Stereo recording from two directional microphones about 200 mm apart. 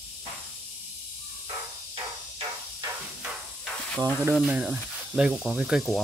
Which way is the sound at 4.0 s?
10° right (ahead or behind).